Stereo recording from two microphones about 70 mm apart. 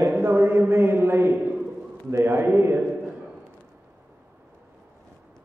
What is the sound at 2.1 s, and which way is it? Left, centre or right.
Speech, right.